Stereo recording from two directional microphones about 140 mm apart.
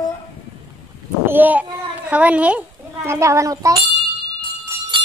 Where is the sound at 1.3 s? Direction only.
10° right (ahead or behind).